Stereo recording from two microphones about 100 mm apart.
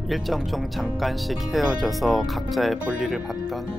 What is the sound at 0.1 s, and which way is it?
Speech, centre (ahead or behind).